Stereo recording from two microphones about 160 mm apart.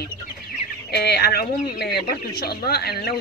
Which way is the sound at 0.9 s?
90° left.